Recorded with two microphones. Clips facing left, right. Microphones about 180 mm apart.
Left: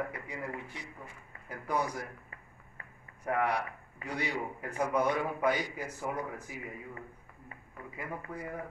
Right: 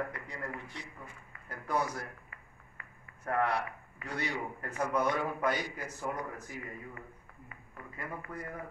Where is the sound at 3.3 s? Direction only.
10° left (ahead or behind).